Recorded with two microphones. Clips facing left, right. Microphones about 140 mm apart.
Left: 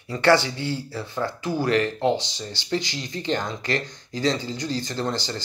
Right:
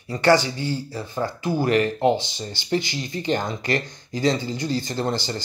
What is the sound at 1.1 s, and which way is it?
Speech, 15° right (ahead or behind).